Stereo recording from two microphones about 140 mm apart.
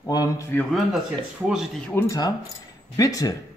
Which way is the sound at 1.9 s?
25° left (ahead or behind).